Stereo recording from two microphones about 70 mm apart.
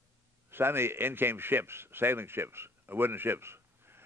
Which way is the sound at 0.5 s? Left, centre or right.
Right.